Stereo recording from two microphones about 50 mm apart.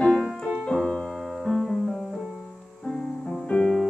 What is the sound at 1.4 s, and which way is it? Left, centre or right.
Music, centre.